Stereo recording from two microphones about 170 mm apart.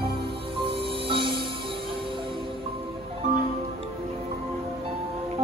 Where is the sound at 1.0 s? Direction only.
30° right (ahead or behind).